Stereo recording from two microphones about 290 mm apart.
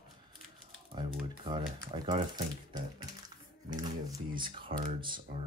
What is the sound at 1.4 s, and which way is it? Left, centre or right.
Speech, centre.